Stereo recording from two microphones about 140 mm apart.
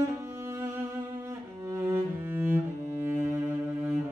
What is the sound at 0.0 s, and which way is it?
Music, 20° right (ahead or behind).